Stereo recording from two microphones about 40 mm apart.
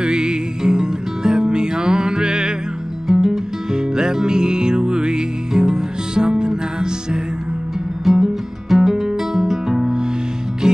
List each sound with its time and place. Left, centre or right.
0.0 s music: right
8.0 s music: centre